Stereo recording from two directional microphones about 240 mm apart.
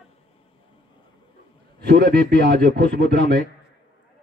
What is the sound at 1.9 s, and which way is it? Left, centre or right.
Speech, right.